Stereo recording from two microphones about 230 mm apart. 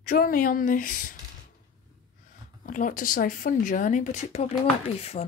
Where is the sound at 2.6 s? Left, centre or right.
Left.